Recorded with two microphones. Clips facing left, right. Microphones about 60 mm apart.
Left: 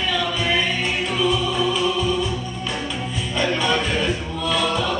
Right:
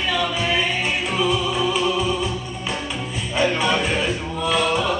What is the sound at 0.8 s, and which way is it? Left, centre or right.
Music, centre.